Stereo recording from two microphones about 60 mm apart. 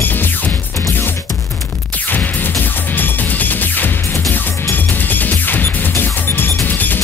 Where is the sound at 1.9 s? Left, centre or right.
Left.